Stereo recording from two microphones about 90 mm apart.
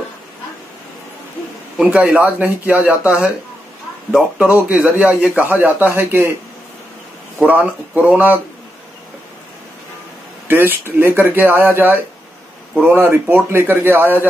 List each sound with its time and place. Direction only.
1.8 s a man's voice: 15° right (ahead or behind)
7.3 s a man's voice: 15° right (ahead or behind)
10.5 s speech: 25° right (ahead or behind)